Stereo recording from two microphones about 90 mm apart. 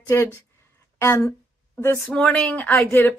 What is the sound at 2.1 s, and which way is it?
Speech, 15° left (ahead or behind).